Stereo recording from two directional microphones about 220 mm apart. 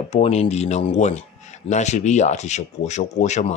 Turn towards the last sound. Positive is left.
turn(degrees=30)  # may be behind; listen again after turning